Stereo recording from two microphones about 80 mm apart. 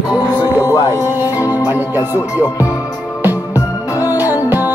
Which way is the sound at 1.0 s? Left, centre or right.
Right.